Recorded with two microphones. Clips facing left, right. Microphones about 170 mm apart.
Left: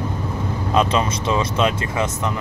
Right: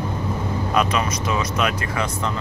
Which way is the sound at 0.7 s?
25° left (ahead or behind).